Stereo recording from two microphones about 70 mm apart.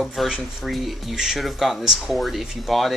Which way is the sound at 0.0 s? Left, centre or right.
Centre.